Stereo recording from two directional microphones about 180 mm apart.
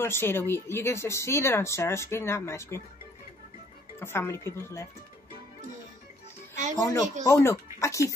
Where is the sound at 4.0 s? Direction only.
15° left (ahead or behind).